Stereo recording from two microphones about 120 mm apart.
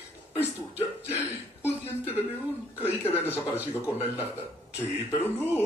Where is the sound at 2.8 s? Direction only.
20° left (ahead or behind).